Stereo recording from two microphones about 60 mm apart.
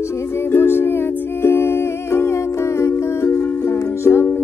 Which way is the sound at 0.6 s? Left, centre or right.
Left.